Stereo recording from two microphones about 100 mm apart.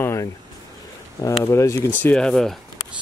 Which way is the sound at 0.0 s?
30° left (ahead or behind).